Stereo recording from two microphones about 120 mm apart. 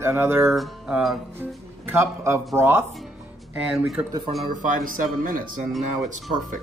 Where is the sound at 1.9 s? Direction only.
20° right (ahead or behind).